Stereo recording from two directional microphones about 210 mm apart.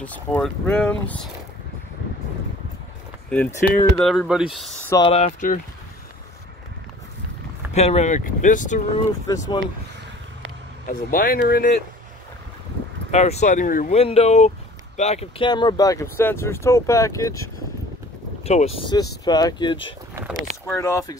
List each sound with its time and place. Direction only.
0.0 s speech: 5° left (ahead or behind)
3.3 s speech: 10° left (ahead or behind)
4.8 s speech: 15° left (ahead or behind)
5.1 s speech: 35° left (ahead or behind)
7.7 s speech: 30° left (ahead or behind)
10.9 s speech: 40° left (ahead or behind)
13.1 s speech: 35° left (ahead or behind); by 17.5 s 15° left (ahead or behind)
18.4 s speech: 30° left (ahead or behind)
20.2 s speech: 10° right (ahead or behind)
20.6 s speech: 10° left (ahead or behind)